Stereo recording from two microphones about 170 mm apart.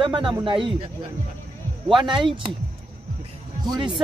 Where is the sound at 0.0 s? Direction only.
30° right (ahead or behind).